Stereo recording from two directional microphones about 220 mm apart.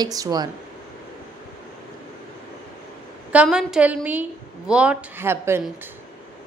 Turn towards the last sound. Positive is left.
turn(degrees=-10)  # may be behind; listen again after turning